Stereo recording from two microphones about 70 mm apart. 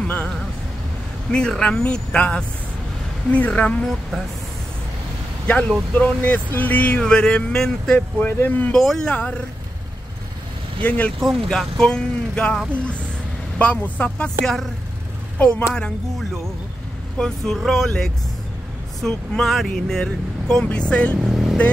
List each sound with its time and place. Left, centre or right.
1.3 s speech: centre
5.9 s speech: left
8.3 s speech: left
8.7 s speech: centre
10.8 s speech: centre
11.1 s speech: centre
13.6 s speech: centre
14.4 s speech: centre
17.2 s speech: centre
21.2 s vehicle: centre